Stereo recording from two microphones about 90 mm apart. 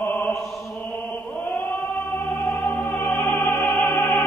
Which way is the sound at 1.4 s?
25° left (ahead or behind).